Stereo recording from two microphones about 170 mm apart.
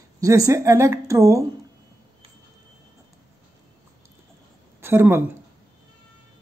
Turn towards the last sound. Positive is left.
turn(degrees=-15)  # may be behind; listen again after turning